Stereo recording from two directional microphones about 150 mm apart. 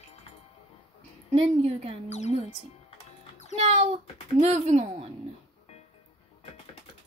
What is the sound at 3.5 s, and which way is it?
Speech, 45° right (ahead or behind).